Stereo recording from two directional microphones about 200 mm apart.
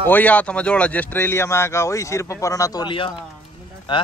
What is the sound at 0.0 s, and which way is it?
Speech, 10° left (ahead or behind).